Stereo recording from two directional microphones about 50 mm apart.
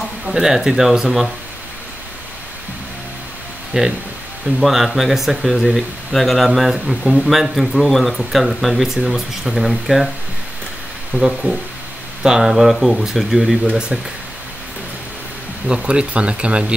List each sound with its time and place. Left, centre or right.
0.3 s speech: centre
3.7 s speech: centre
4.6 s speech: centre
11.1 s speech: right
12.2 s speech: centre
15.7 s speech: right